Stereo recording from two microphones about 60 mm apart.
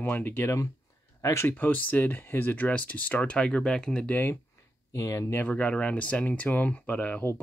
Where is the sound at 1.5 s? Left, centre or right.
Left; by 4.1 s centre.